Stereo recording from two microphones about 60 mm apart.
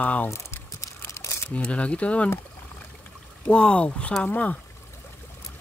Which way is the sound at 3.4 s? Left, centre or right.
Centre.